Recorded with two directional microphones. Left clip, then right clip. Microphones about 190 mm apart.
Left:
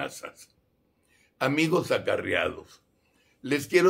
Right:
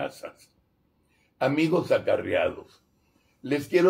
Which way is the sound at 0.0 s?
25° left (ahead or behind).